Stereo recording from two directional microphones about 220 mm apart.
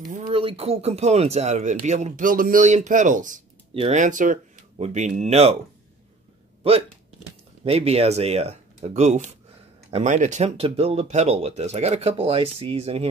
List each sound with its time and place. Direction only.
0.1 s speech: 25° right (ahead or behind)
7.6 s speech: 30° right (ahead or behind)